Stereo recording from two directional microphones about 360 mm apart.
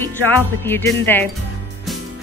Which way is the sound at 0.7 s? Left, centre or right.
Centre.